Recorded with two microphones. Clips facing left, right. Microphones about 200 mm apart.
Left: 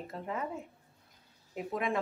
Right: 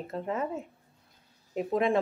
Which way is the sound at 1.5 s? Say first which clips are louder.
Right 7 dB; 25° right (ahead or behind).